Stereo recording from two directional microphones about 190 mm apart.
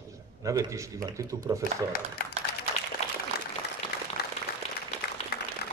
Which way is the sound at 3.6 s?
60° left (ahead or behind).